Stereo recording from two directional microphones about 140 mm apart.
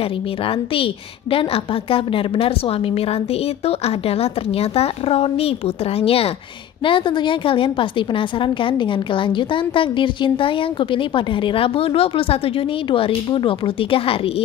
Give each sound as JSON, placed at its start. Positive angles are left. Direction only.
{"t": 1.3, "sound": "a woman's voice", "side_deg": 40}